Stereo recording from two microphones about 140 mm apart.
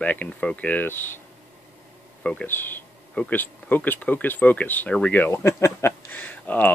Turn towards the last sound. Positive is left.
turn(degrees=10)  # may be behind; listen again after turning